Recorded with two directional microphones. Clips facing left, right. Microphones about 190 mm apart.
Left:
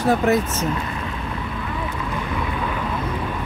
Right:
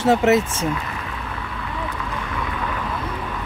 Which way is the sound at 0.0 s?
25° right (ahead or behind).